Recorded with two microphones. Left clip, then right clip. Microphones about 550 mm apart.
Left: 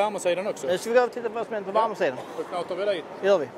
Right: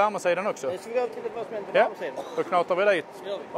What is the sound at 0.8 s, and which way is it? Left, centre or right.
Speech, left.